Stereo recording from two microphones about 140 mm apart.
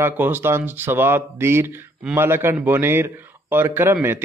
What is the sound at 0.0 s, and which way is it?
A man's voice, 15° right (ahead or behind).